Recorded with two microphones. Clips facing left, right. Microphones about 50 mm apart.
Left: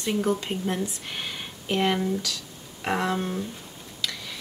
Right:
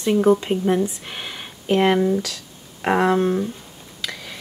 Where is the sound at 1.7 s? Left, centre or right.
Right.